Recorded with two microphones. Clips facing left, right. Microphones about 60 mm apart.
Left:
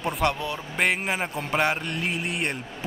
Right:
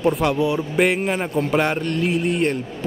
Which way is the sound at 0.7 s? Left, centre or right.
Centre.